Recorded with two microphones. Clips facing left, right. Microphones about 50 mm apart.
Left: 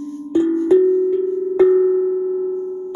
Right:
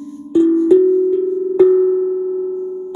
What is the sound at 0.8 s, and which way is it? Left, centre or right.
Cowbell, left.